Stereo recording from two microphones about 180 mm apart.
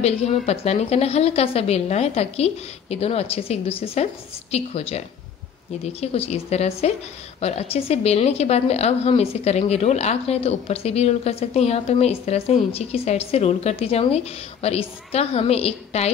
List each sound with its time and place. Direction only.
0.0 s speech: 35° left (ahead or behind)